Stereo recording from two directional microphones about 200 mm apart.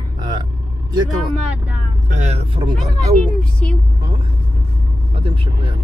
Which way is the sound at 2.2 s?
30° right (ahead or behind).